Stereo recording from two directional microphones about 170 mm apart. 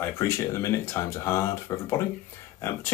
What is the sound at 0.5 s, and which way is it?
Speech, 15° left (ahead or behind).